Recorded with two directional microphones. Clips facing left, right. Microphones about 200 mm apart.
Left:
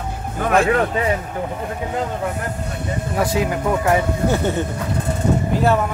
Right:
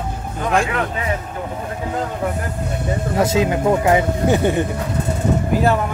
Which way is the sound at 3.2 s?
25° right (ahead or behind).